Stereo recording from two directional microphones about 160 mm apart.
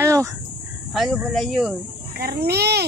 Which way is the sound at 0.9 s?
Centre (ahead or behind).